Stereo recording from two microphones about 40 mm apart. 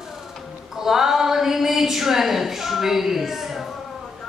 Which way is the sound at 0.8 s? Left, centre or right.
Centre.